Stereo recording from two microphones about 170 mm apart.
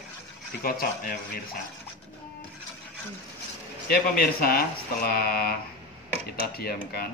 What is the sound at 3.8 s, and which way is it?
Speech, 65° left (ahead or behind).